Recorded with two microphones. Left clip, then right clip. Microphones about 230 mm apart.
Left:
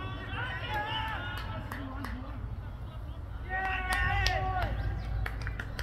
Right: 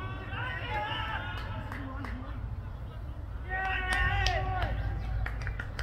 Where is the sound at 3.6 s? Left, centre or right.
Centre.